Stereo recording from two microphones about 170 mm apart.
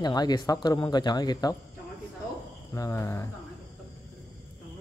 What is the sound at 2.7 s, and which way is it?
Speech, 15° left (ahead or behind).